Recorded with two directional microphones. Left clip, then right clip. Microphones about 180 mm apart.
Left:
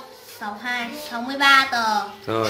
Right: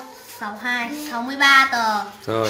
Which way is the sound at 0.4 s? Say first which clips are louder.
Right 2 dB; 20° left (ahead or behind).